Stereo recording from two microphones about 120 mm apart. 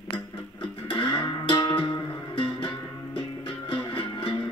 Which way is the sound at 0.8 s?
45° left (ahead or behind).